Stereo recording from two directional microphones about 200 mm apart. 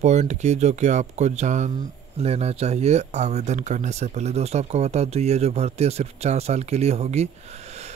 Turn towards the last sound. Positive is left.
turn(degrees=-35)  # may be behind; listen again after turning